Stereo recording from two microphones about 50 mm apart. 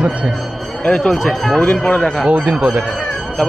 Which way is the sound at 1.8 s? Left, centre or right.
Left.